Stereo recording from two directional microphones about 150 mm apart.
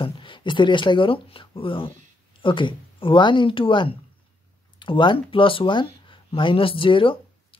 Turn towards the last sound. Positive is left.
turn(degrees=35)  # may be behind; listen again after turning